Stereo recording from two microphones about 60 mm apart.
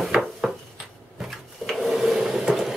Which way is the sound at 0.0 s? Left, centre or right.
Centre.